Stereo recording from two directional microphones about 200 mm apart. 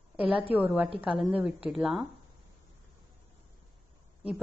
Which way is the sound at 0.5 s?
5° right (ahead or behind).